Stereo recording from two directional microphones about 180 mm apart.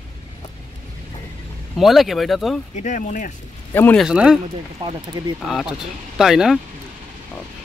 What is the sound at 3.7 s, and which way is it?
Speech, 10° left (ahead or behind).